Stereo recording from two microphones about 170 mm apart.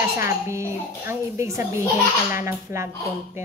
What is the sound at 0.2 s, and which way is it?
Speech, 15° right (ahead or behind).